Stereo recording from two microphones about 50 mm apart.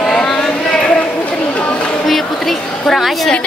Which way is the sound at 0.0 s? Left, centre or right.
Centre.